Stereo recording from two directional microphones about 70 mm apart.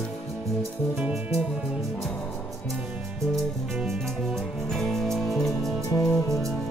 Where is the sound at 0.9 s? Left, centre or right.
Centre.